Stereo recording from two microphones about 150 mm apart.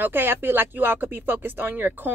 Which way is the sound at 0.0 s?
15° right (ahead or behind).